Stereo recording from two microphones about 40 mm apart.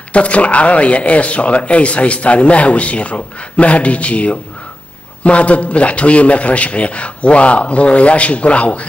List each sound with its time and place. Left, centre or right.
0.1 s speech: left